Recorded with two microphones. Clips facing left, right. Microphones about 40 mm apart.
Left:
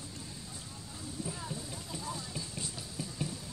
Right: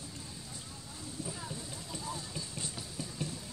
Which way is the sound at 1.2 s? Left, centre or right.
Centre.